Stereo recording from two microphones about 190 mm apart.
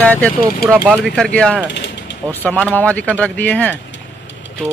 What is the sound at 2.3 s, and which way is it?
Speech, 10° left (ahead or behind).